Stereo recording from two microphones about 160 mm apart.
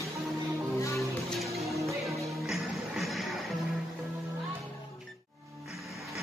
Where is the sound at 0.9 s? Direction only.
Centre (ahead or behind).